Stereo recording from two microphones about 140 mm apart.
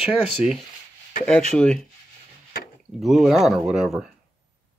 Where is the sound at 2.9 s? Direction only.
Centre (ahead or behind).